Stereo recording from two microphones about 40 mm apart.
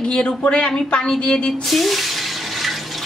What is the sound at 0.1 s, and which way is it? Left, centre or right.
Speech, left.